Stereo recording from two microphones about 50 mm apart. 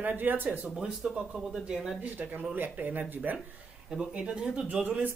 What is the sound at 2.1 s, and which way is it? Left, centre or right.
Speech, right.